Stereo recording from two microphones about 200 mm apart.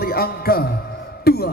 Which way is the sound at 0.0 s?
50° left (ahead or behind).